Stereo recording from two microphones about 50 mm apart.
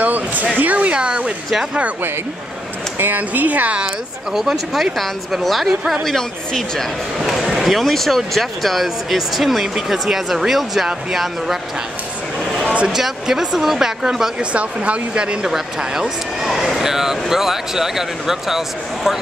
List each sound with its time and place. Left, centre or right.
0.0 s a sound: right
0.6 s speech: right
0.9 s speech: centre
3.0 s speech: right
4.3 s speech: centre
6.0 s speech: centre
7.2 s speech: centre
12.9 s speech: centre
14.4 s speech: right
16.4 s speech: centre